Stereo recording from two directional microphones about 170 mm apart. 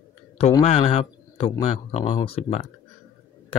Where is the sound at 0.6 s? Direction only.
40° left (ahead or behind).